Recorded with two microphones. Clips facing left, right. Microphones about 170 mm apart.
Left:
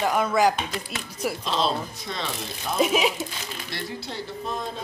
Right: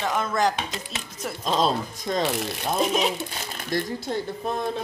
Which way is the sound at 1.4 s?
45° right (ahead or behind).